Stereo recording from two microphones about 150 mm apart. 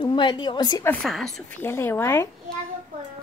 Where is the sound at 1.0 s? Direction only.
Centre (ahead or behind).